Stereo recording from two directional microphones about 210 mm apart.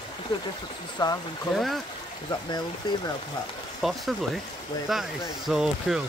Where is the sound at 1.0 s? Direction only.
20° left (ahead or behind).